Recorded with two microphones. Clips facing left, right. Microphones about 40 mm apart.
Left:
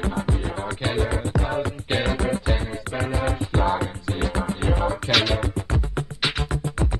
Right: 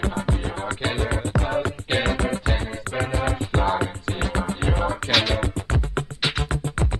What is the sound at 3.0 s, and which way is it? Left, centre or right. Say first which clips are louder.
Music: right 1 dB; right.